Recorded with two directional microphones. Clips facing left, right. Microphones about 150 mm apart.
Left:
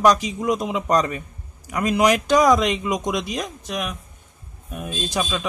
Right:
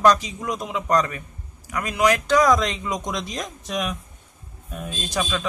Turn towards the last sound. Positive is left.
turn(degrees=5)  # may be behind; listen again after turning